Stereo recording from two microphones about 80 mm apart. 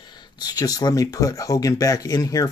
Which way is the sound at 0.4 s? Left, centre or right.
Left.